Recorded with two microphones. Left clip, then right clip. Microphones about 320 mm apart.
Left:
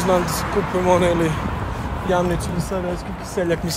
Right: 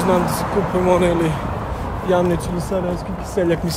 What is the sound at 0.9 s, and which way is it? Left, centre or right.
Speech, centre.